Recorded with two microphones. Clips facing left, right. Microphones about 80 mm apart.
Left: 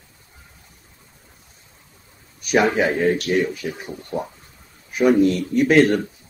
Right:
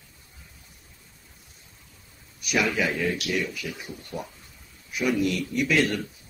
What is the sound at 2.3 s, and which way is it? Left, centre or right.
Speech, left.